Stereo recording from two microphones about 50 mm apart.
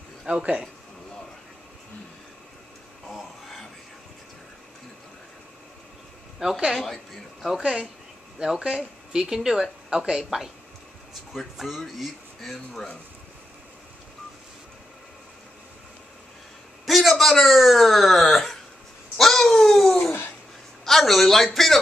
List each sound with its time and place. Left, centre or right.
0.3 s speech: centre
3.1 s a sound: centre
6.4 s a woman's voice: centre
8.5 s speech: centre
16.8 s speech: centre
20.0 s a sound: left
20.8 s speech: centre